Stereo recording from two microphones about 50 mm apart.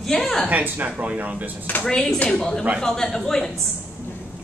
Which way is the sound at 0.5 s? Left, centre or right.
Right.